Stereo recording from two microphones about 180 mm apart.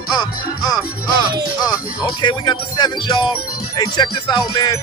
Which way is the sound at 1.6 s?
20° left (ahead or behind).